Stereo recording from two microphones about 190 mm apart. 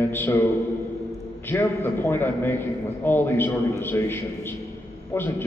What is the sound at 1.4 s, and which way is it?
A man's voice, 10° left (ahead or behind).